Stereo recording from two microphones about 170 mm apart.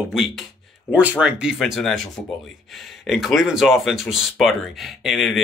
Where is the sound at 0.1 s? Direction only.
Centre (ahead or behind).